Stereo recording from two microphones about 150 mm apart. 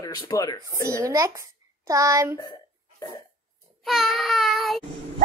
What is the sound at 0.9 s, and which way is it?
Speech, 20° right (ahead or behind).